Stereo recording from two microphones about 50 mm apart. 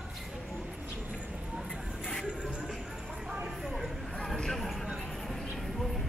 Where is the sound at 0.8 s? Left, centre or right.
Right.